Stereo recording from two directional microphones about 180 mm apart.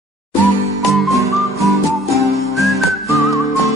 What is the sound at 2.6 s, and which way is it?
Whistling, centre (ahead or behind).